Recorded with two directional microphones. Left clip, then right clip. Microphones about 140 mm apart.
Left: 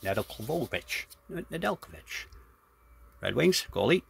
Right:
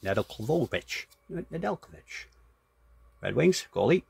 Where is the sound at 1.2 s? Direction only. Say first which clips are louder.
Even; 15° left (ahead or behind).